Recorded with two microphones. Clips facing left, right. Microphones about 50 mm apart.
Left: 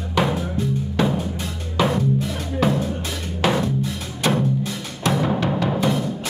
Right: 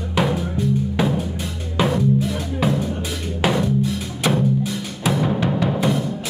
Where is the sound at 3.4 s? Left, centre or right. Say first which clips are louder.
Right 1 dB; centre.